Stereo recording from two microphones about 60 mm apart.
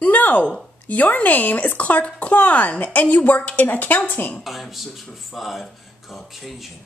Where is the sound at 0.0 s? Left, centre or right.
Left.